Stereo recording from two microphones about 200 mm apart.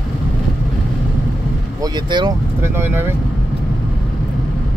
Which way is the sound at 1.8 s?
20° right (ahead or behind).